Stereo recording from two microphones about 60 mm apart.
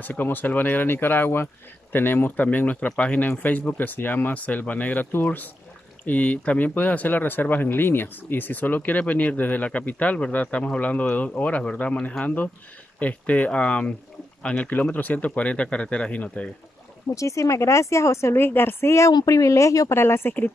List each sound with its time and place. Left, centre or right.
0.0 s speech: left
17.1 s a woman's voice: left
19.9 s speech: left